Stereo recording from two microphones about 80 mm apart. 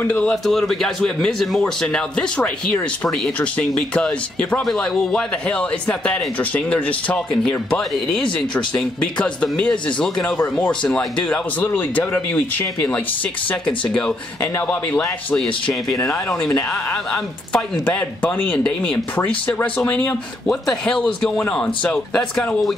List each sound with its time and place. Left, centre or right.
0.0 s a man's voice: centre
9.0 s a man's voice: centre
10.2 s speech: left
10.7 s a man's voice: centre
11.6 s speech: left
13.5 s a man's voice: centre
16.9 s a man's voice: centre
20.4 s a man's voice: centre